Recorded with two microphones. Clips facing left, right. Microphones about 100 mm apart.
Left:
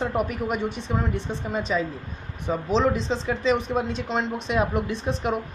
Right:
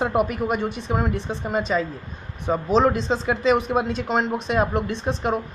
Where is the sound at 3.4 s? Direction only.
5° right (ahead or behind).